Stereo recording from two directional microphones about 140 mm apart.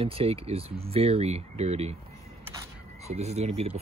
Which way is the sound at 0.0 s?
45° right (ahead or behind).